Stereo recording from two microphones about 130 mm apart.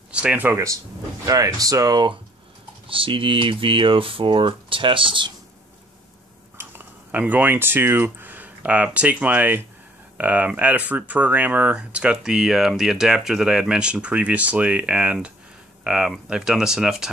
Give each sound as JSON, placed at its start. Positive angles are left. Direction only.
{"t": 0.1, "sound": "speech", "side_deg": -10}
{"t": 2.9, "sound": "speech", "side_deg": -45}
{"t": 6.6, "sound": "speech", "side_deg": -15}